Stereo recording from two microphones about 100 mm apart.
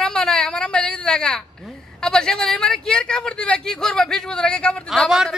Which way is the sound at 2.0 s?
5° left (ahead or behind).